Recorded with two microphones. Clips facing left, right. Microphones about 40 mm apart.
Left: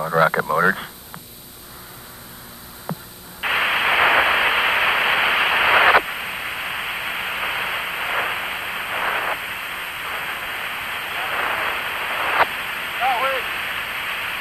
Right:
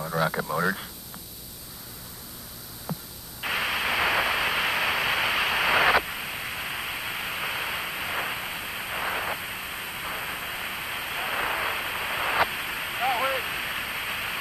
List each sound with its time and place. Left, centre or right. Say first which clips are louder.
0.0 s speech: left 9 dB; left
2.9 s radio: left 5 dB; left